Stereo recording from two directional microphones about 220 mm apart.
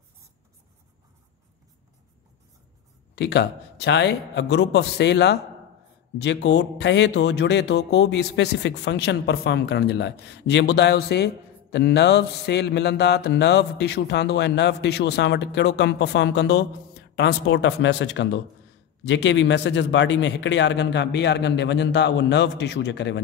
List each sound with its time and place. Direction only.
3.2 s speech: 50° left (ahead or behind)